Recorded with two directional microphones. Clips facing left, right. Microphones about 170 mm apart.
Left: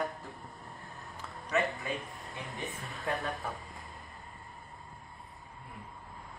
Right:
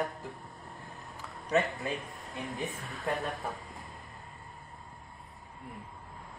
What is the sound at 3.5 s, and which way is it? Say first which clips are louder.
Vehicle: right 1 dB; centre (ahead or behind).